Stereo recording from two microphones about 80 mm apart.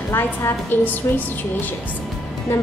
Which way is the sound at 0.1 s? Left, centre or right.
Left.